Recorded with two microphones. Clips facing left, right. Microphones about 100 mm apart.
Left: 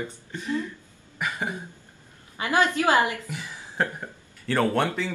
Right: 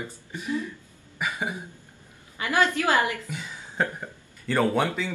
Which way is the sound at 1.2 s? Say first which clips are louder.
Even; 10° right (ahead or behind).